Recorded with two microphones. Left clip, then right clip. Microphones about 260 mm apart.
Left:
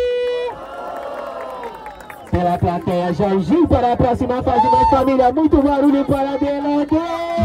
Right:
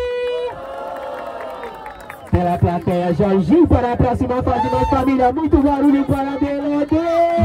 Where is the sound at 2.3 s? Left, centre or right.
Left.